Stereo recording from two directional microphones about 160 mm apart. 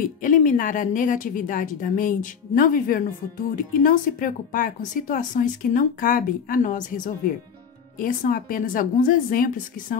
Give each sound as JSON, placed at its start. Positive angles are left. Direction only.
{"t": 0.0, "sound": "speech", "side_deg": 55}